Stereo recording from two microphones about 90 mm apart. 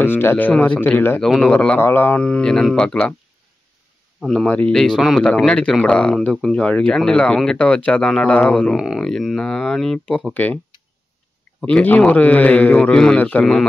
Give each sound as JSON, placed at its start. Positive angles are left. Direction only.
{"t": 0.0, "sound": "a man's voice", "side_deg": 25}
{"t": 1.2, "sound": "a man's voice", "side_deg": 5}
{"t": 1.8, "sound": "a man's voice", "side_deg": 25}
{"t": 4.2, "sound": "a man's voice", "side_deg": 5}
{"t": 10.1, "sound": "a man's voice", "side_deg": 15}
{"t": 11.6, "sound": "a man's voice", "side_deg": 15}